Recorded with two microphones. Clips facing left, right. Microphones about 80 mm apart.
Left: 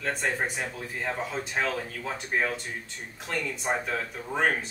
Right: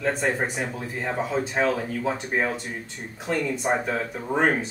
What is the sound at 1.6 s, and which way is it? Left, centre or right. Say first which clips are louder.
Speech: right 5 dB; centre.